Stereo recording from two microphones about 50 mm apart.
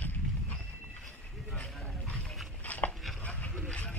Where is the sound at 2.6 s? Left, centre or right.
Left.